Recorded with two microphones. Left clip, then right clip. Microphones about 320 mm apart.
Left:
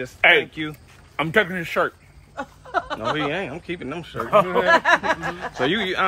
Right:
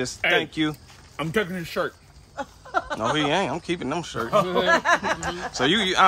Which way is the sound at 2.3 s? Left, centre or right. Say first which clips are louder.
Left 1 dB; left.